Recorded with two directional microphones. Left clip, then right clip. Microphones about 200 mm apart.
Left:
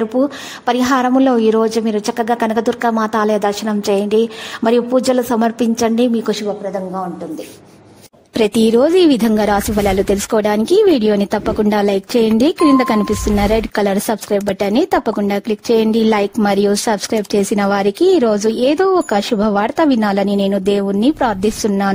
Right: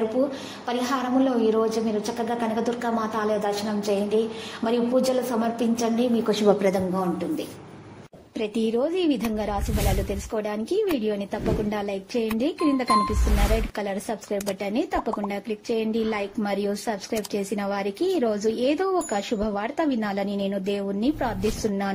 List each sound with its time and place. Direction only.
0.7 s a woman's voice: 45° left (ahead or behind)
8.4 s speech: 60° left (ahead or behind)